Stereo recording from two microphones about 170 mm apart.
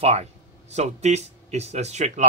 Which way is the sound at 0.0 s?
40° right (ahead or behind).